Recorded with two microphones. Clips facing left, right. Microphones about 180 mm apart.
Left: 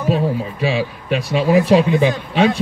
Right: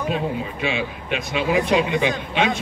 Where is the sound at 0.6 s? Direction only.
35° left (ahead or behind).